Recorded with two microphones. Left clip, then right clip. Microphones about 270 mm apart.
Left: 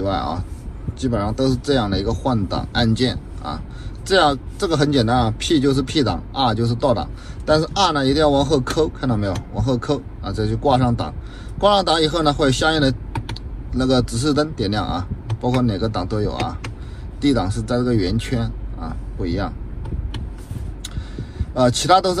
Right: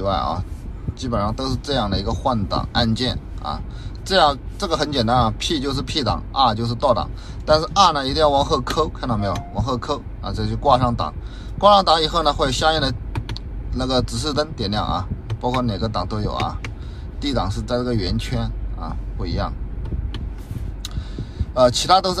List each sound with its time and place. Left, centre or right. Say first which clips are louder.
0.0 s a man's voice: right 1 dB; right
21.4 s a man's voice: right 2 dB; centre